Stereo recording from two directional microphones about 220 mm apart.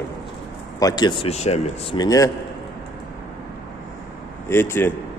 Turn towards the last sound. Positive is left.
turn(degrees=10)  # may be behind; listen again after turning